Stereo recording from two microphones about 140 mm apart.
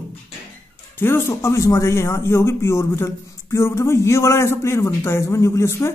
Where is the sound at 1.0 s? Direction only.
15° left (ahead or behind).